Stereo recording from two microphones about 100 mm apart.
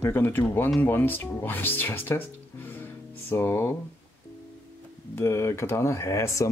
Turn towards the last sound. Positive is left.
turn(degrees=30)  # may be behind; listen again after turning